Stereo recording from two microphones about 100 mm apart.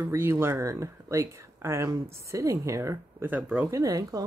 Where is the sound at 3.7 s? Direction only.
35° right (ahead or behind).